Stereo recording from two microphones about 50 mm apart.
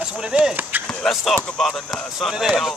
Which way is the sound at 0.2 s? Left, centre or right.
Centre.